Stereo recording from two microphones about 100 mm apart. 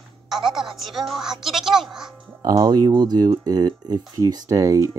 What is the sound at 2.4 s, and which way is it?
Speech, 40° right (ahead or behind).